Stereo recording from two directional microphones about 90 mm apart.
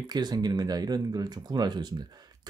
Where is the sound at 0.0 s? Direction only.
55° right (ahead or behind).